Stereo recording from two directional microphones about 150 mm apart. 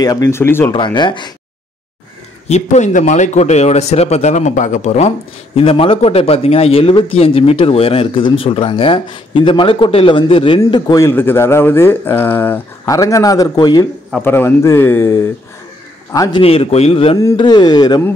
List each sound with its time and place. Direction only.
0.0 s carnatic music: 25° left (ahead or behind)
0.7 s speech: 30° left (ahead or behind)
2.4 s a man's voice: 50° left (ahead or behind)
5.6 s speech: 40° left (ahead or behind)
11.1 s speech: 15° left (ahead or behind)
14.1 s a man's voice: 15° left (ahead or behind)
16.3 s speech: 40° left (ahead or behind)
17.2 s carnatic music: 30° left (ahead or behind)